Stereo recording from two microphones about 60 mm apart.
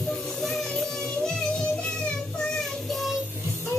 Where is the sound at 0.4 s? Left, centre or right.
Centre.